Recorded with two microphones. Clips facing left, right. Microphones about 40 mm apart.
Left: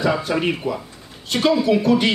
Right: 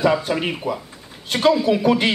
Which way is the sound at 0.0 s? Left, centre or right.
Centre.